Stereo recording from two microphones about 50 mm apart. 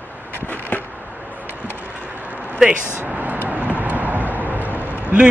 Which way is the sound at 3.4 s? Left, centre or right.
Right.